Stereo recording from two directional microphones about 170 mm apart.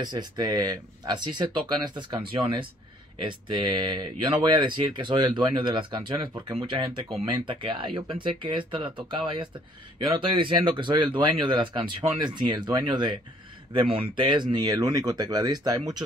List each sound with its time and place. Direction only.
0.0 s speech: 25° right (ahead or behind)